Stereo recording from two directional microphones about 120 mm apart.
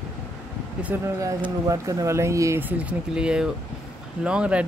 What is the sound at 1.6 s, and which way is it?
Speech, 25° right (ahead or behind).